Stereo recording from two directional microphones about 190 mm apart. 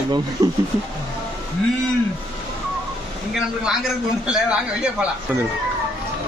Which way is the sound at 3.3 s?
Centre (ahead or behind).